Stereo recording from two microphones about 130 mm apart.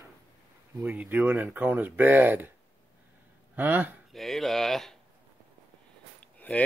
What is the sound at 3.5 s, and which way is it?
Speech, 15° right (ahead or behind).